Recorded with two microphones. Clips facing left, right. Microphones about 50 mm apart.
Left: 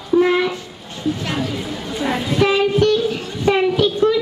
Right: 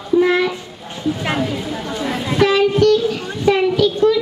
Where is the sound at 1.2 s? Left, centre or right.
Centre.